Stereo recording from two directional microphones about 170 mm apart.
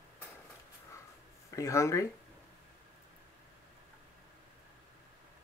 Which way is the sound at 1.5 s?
20° left (ahead or behind).